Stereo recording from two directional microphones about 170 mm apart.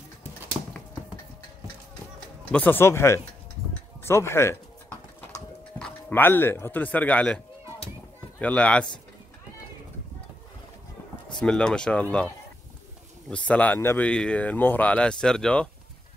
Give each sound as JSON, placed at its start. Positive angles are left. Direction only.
{"t": 0.5, "sound": "a sound", "side_deg": -10}
{"t": 2.1, "sound": "speech", "side_deg": 10}
{"t": 5.8, "sound": "speech", "side_deg": 10}
{"t": 11.3, "sound": "speech", "side_deg": 5}
{"t": 13.3, "sound": "speech", "side_deg": 10}